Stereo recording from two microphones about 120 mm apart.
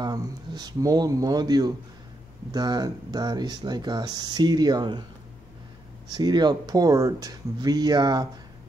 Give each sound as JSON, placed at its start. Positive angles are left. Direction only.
{"t": 0.0, "sound": "a man's voice", "side_deg": -35}
{"t": 6.0, "sound": "speech", "side_deg": -35}